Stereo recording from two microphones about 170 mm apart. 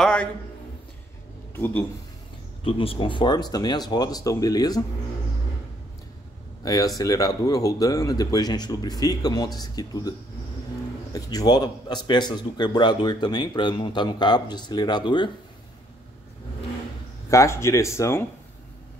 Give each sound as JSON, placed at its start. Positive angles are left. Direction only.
{"t": 0.0, "sound": "a sound", "side_deg": 5}
{"t": 1.5, "sound": "speech", "side_deg": 10}
{"t": 2.6, "sound": "a man's voice", "side_deg": 30}
{"t": 6.6, "sound": "a man's voice", "side_deg": 20}
{"t": 11.1, "sound": "a man's voice", "side_deg": 25}
{"t": 17.3, "sound": "speech", "side_deg": 15}